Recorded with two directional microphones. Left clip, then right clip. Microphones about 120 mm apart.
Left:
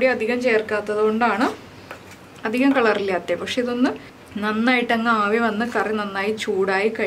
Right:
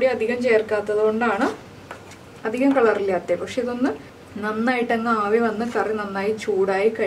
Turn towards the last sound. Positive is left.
turn(degrees=20)  # may be behind; listen again after turning